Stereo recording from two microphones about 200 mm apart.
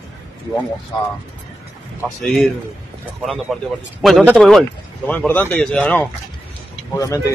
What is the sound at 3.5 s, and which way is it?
Speech, centre (ahead or behind).